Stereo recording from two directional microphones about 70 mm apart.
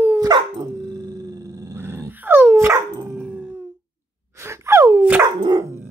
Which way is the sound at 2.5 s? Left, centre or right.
Right.